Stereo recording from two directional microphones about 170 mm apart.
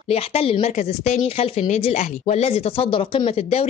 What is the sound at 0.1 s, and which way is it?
A woman's voice, 35° left (ahead or behind).